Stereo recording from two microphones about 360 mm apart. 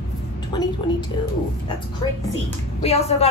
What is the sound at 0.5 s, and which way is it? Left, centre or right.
Speech, centre.